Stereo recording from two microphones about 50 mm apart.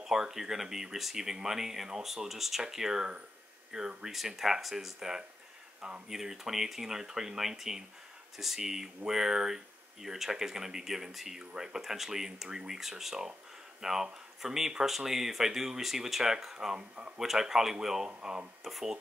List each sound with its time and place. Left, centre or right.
0.0 s speech: centre
5.8 s speech: centre
6.0 s speech: centre